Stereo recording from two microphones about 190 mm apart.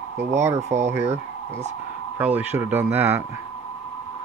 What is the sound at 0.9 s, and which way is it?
Speech, 15° right (ahead or behind).